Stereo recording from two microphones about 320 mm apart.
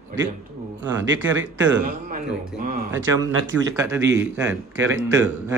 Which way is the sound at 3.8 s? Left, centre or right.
Centre.